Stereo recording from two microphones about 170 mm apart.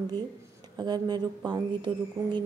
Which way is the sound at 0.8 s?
25° right (ahead or behind).